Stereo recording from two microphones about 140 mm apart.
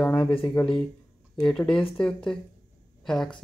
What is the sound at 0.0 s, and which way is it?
Speech, 10° left (ahead or behind).